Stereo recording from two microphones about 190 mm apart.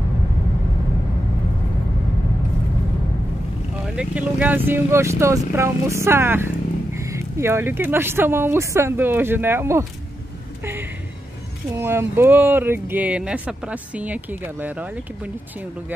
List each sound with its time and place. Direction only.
3.8 s speech: 5° right (ahead or behind)
10.6 s a sound: 10° right (ahead or behind)
11.7 s speech: 15° right (ahead or behind)